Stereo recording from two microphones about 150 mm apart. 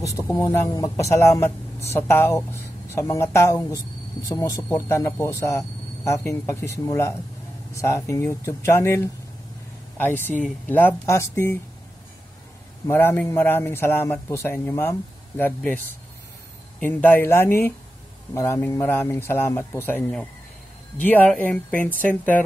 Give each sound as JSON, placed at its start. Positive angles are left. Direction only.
{"t": 0.0, "sound": "a man's voice", "side_deg": 20}
{"t": 10.2, "sound": "a man's voice", "side_deg": 10}
{"t": 12.8, "sound": "a man's voice", "side_deg": 15}
{"t": 16.8, "sound": "a man's voice", "side_deg": 15}